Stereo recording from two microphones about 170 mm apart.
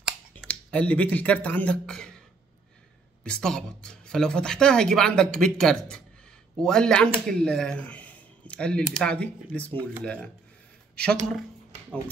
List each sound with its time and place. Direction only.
0.4 s speech: 5° left (ahead or behind)
3.3 s speech: 5° left (ahead or behind)